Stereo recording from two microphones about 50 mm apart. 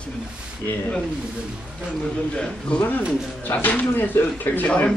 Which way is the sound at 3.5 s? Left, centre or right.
Left.